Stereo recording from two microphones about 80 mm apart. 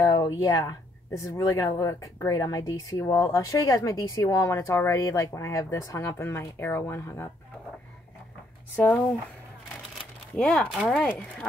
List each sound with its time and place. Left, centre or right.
0.0 s speech: left
8.7 s speech: left
10.3 s speech: centre
10.9 s speech: centre